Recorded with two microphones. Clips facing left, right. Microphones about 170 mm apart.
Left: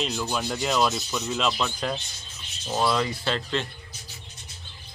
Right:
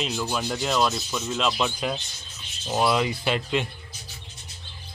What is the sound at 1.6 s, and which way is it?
Speech, 10° right (ahead or behind).